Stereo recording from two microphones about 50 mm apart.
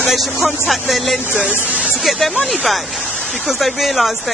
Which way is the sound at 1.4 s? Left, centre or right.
Centre.